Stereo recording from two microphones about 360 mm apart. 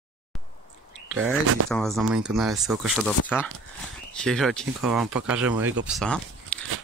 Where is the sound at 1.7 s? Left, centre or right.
Centre.